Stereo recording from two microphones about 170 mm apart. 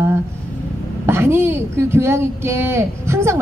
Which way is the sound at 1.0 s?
15° right (ahead or behind).